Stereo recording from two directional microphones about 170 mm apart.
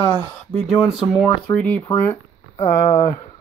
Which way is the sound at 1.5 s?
10° left (ahead or behind).